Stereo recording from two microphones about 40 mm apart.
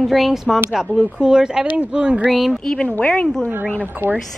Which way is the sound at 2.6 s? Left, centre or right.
Centre.